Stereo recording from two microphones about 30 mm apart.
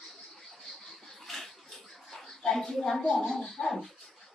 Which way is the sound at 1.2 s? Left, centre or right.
Centre.